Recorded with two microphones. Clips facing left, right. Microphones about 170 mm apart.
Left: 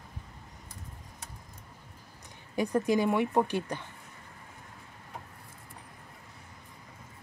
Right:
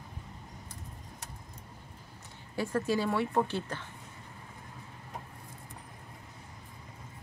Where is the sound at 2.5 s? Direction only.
15° left (ahead or behind).